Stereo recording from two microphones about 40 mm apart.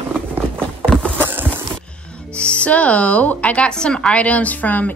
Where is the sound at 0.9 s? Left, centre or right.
Centre.